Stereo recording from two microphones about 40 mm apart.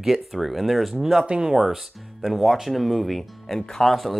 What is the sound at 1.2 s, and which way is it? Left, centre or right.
Speech, right.